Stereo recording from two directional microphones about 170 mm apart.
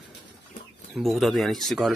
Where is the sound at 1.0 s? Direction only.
Centre (ahead or behind).